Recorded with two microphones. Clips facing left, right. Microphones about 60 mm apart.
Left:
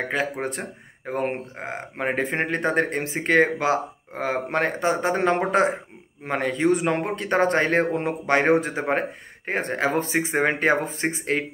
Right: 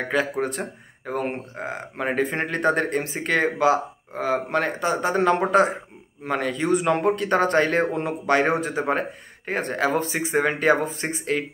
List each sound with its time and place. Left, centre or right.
0.1 s speech: left